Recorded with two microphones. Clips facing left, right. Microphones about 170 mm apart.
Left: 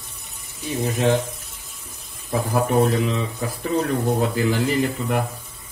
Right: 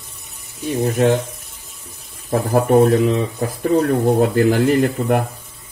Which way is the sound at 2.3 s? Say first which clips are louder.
Right 6 dB; 50° right (ahead or behind).